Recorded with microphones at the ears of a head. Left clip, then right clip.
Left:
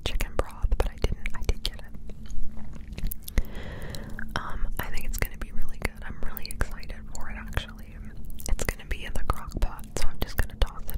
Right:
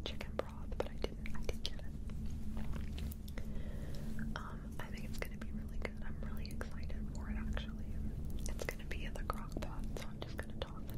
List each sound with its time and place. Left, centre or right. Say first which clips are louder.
0.0 s whispering: left 11 dB; left
3.0 s whispering: left 11 dB; left
8.5 s whispering: left 11 dB; left